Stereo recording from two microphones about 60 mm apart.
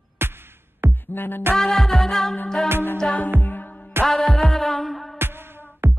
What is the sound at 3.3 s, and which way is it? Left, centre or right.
Music, left.